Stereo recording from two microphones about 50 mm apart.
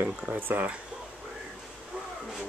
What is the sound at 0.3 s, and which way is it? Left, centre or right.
Speech, right.